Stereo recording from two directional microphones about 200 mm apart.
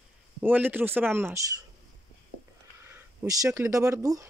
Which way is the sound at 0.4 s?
10° right (ahead or behind).